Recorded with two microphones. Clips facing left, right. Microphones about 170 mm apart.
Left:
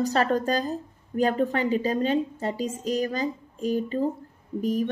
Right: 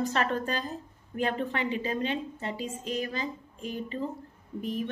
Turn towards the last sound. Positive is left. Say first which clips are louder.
# left 7 dB
turn(degrees=40)  # may be behind; listen again after turning